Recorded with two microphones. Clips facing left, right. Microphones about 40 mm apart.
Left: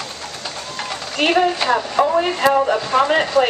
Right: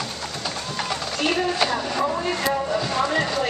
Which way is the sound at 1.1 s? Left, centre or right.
Left.